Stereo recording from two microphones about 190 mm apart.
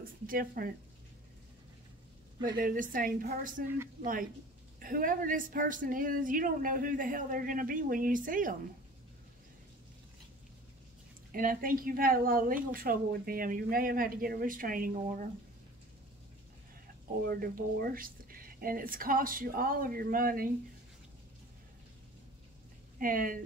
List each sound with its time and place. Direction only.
0.3 s speech: 50° right (ahead or behind)
2.5 s speech: 45° right (ahead or behind)
3.6 s speech: 10° right (ahead or behind)
4.0 s speech: 45° right (ahead or behind)
11.3 s speech: 50° right (ahead or behind)
17.3 s speech: 50° right (ahead or behind)
22.9 s speech: 45° right (ahead or behind)